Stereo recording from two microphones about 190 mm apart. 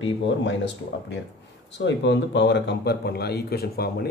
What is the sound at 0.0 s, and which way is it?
Speech, 75° left (ahead or behind).